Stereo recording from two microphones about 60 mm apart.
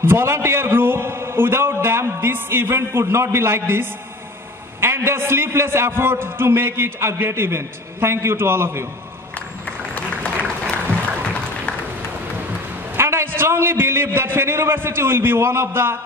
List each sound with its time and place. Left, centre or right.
0.0 s a man's voice: right
9.7 s applause: centre
12.9 s a sound: right
13.4 s a man's voice: right